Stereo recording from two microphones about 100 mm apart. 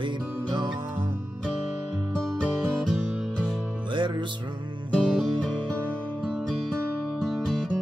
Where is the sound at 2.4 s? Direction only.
10° right (ahead or behind).